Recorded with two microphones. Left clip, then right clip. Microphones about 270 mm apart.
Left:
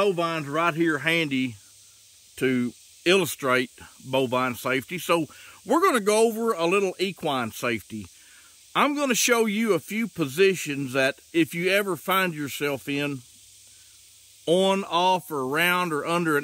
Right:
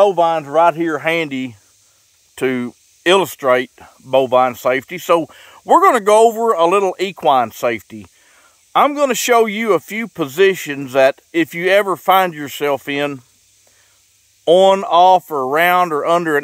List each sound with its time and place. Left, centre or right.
0.1 s speech: centre
14.4 s speech: centre